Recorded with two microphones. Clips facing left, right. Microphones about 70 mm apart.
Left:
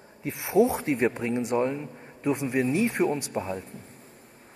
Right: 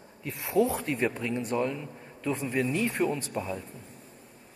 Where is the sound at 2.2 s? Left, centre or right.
Centre.